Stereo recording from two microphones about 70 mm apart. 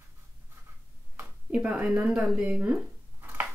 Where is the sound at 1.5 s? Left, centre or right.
Centre.